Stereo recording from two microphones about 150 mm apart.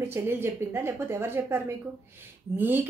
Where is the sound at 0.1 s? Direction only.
15° right (ahead or behind).